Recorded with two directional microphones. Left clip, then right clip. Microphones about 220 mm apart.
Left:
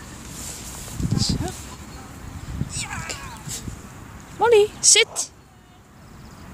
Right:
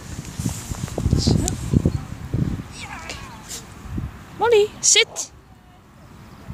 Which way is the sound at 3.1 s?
Centre (ahead or behind).